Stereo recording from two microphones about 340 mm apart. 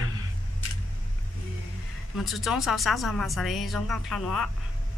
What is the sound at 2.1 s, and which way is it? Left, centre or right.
A woman's voice, centre.